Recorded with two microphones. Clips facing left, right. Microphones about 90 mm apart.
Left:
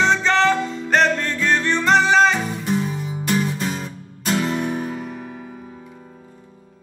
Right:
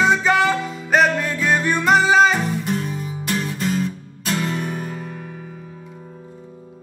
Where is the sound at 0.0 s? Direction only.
10° right (ahead or behind).